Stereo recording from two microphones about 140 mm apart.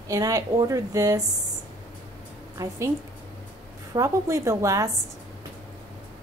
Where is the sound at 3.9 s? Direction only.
25° right (ahead or behind).